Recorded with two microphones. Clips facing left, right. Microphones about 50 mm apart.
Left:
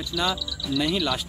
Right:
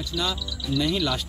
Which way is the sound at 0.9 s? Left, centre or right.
Centre.